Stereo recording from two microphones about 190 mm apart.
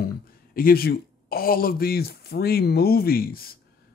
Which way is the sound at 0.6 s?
50° left (ahead or behind).